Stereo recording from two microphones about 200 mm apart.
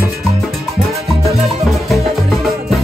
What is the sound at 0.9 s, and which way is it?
Salsa music, 30° right (ahead or behind).